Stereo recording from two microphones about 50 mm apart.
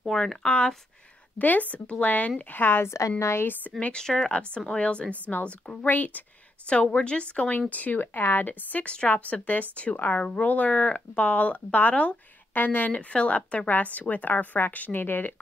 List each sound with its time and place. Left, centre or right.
0.0 s speech: centre
1.4 s a woman's voice: left
2.5 s a woman's voice: left
2.9 s a woman's voice: left
3.9 s speech: centre
4.7 s speech: left
5.3 s a woman's voice: centre
5.9 s a woman's voice: left
6.7 s a woman's voice: left
8.8 s a woman's voice: left